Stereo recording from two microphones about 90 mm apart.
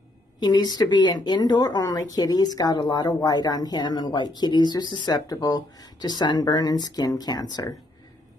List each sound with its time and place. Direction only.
0.4 s speech: 50° left (ahead or behind)